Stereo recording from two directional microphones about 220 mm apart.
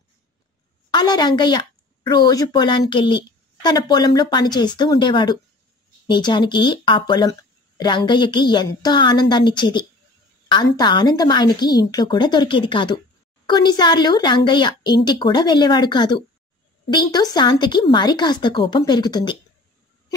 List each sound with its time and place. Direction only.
0.9 s a woman's voice: 20° left (ahead or behind)